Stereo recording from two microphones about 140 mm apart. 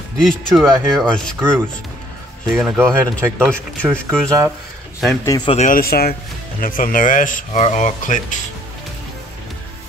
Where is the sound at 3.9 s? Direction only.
20° right (ahead or behind).